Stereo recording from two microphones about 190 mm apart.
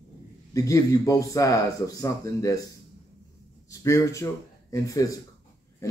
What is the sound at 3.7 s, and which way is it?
Speech, 15° left (ahead or behind).